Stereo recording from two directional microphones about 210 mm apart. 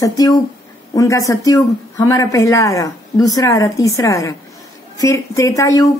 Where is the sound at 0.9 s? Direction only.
15° left (ahead or behind).